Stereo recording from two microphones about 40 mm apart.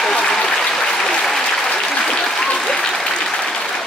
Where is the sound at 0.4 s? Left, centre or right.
Centre.